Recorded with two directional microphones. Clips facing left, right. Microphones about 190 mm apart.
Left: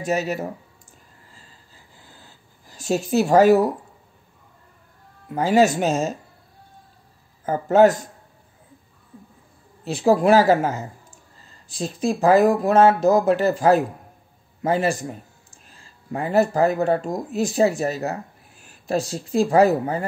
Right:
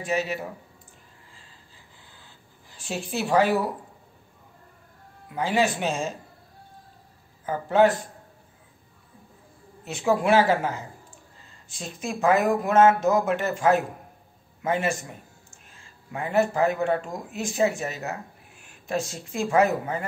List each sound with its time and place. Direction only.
0.0 s speech: 40° left (ahead or behind)
2.0 s a sound: 40° left (ahead or behind)
5.3 s speech: 40° left (ahead or behind)
7.4 s speech: 45° left (ahead or behind)
9.8 s speech: 35° left (ahead or behind)